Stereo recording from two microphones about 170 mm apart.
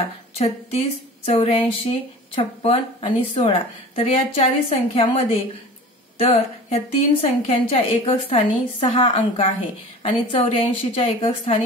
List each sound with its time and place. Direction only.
0.4 s a woman's voice: 40° left (ahead or behind)